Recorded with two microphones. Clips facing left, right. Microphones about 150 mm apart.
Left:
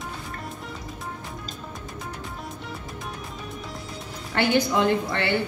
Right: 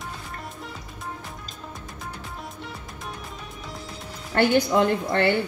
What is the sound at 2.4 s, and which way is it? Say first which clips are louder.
Music: left 2 dB; centre (ahead or behind).